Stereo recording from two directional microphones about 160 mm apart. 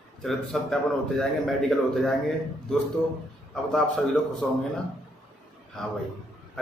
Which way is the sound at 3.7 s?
5° left (ahead or behind).